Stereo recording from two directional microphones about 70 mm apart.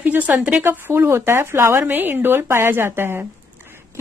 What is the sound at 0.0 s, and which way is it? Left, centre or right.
A woman's voice, right.